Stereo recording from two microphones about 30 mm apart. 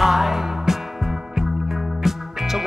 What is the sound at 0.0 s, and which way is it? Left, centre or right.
Music, centre.